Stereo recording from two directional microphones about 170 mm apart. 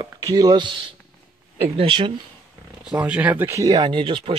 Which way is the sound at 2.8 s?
5° right (ahead or behind).